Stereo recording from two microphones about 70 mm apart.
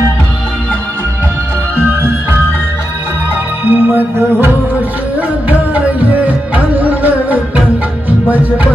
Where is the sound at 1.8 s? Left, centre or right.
Right.